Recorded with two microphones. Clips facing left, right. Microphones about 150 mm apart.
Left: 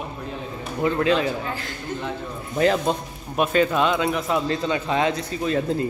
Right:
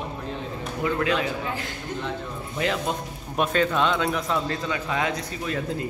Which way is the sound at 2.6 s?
40° left (ahead or behind).